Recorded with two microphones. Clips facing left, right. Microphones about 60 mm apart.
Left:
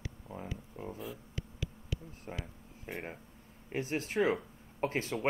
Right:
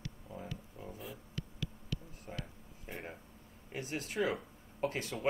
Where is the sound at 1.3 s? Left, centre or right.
Centre.